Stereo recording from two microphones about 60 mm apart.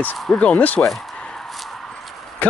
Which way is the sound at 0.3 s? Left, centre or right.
Left.